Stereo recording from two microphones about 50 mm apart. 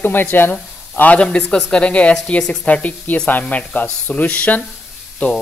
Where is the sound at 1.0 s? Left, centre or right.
Left.